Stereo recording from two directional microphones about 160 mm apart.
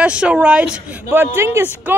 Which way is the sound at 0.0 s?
5° right (ahead or behind).